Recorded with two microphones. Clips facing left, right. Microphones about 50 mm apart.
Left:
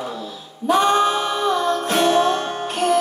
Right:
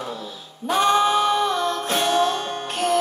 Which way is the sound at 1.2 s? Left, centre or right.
Left.